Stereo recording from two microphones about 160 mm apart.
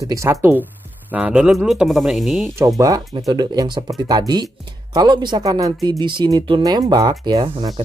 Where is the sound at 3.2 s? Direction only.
20° right (ahead or behind).